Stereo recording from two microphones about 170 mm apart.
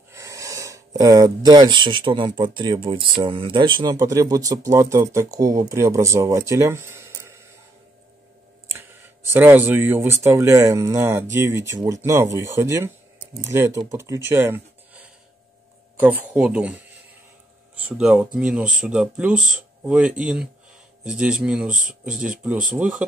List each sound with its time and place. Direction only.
0.1 s speech: 20° right (ahead or behind)
8.7 s a sound: 15° right (ahead or behind)
10.2 s speech: 15° right (ahead or behind)
21.6 s speech: 50° right (ahead or behind)
22.1 s speech: 5° right (ahead or behind)